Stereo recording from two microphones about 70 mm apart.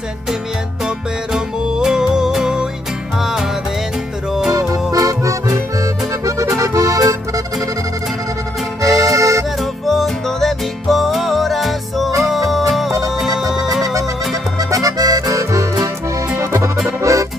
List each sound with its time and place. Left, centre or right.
0.8 s music: centre
4.9 s accordion: right
8.9 s accordion: right
9.6 s music: centre
14.3 s accordion: right
16.3 s music: right
17.0 s accordion: right